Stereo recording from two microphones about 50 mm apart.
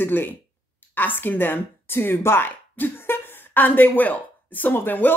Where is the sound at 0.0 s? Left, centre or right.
Left.